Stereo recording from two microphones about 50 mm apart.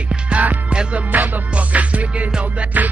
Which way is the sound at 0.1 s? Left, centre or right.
Right.